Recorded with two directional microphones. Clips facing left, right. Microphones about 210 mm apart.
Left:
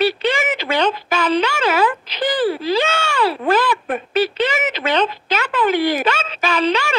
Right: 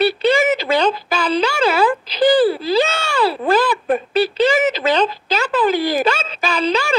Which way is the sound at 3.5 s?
35° right (ahead or behind).